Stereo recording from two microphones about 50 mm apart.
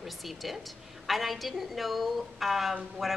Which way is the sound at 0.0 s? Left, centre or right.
Centre.